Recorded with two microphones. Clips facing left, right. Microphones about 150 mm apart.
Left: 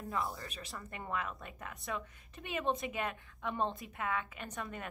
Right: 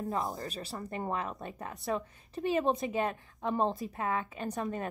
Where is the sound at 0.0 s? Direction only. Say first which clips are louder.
Right 5 dB; 45° right (ahead or behind).